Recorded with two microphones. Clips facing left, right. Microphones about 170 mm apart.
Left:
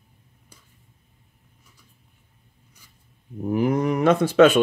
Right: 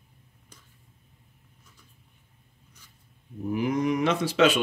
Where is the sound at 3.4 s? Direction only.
50° left (ahead or behind).